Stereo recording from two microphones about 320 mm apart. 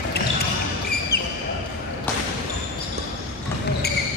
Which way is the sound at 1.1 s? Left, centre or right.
Left.